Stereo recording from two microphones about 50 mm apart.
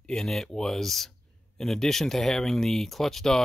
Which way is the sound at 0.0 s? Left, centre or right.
Centre.